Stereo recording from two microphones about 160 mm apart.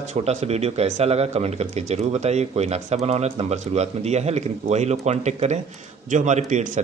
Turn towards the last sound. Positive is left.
turn(degrees=-50)  # may be behind; listen again after turning